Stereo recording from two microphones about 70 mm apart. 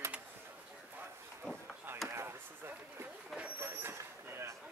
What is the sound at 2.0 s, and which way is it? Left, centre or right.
Chop, right.